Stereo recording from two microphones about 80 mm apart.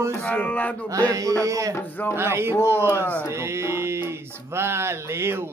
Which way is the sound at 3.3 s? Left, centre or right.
Right.